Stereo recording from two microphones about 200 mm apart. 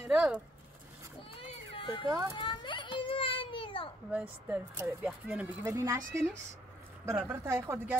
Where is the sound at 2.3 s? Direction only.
25° left (ahead or behind).